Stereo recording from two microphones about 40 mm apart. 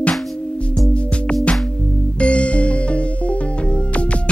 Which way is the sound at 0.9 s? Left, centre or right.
Left.